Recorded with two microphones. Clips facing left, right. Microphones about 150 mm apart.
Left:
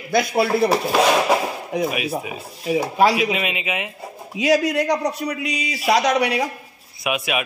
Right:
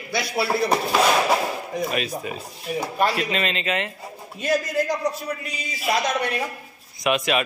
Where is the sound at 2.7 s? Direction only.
90° left.